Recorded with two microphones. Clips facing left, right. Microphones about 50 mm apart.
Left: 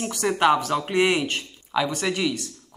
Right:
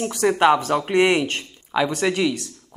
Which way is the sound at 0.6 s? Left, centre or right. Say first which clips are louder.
Right 3 dB; right.